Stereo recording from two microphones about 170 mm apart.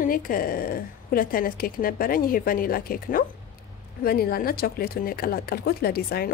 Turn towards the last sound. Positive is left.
turn(degrees=65)  # may be behind; listen again after turning